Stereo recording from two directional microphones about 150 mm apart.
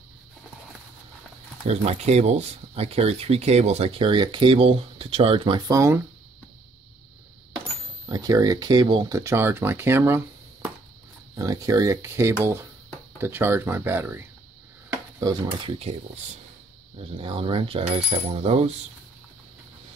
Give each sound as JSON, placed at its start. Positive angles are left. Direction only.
{"t": 1.7, "sound": "speech", "side_deg": -45}
{"t": 5.7, "sound": "speech", "side_deg": -20}
{"t": 8.1, "sound": "speech", "side_deg": -25}
{"t": 14.9, "sound": "dishes", "side_deg": -25}
{"t": 17.0, "sound": "speech", "side_deg": -35}